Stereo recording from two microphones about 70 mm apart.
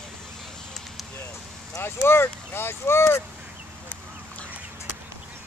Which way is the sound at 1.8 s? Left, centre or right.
Left.